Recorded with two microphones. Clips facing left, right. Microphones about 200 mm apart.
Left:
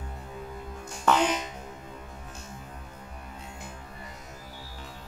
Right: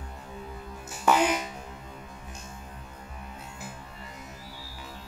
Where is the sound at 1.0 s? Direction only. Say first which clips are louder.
Right 1 dB; 10° right (ahead or behind).